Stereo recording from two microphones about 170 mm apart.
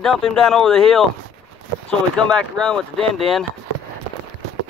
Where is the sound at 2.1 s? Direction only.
5° left (ahead or behind).